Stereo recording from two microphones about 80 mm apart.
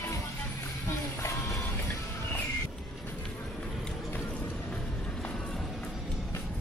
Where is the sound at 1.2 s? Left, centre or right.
Left.